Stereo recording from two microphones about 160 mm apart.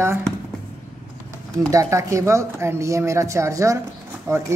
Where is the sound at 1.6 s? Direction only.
20° right (ahead or behind).